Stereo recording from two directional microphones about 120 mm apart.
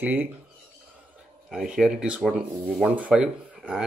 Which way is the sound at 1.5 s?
5° right (ahead or behind).